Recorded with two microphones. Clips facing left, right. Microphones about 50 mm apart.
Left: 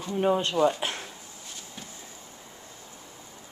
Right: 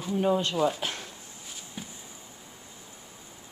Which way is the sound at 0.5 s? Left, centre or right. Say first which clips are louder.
Left 3 dB; centre.